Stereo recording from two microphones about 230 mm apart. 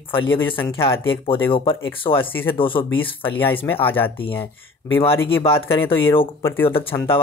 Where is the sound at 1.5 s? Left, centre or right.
Left.